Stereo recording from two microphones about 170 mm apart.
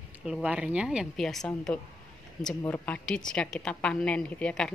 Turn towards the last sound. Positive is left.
turn(degrees=5)  # may be behind; listen again after turning